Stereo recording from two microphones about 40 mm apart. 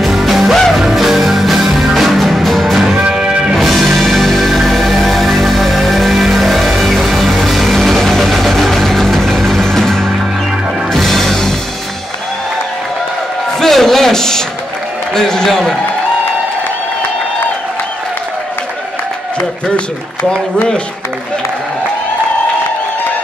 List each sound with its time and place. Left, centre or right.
0.0 s music: centre
3.1 s music: right
3.5 s music: centre
13.6 s a sound: centre